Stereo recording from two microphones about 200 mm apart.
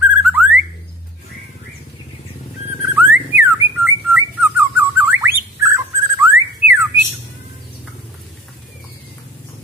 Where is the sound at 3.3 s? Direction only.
10° right (ahead or behind).